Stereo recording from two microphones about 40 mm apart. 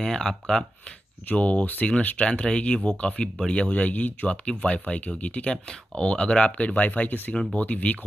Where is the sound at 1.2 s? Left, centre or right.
Left.